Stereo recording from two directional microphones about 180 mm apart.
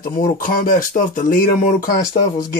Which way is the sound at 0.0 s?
50° left (ahead or behind).